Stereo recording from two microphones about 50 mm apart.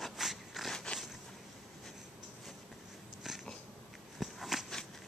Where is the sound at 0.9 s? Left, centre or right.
Centre.